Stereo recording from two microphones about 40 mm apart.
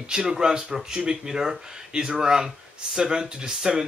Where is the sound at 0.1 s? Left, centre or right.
Centre.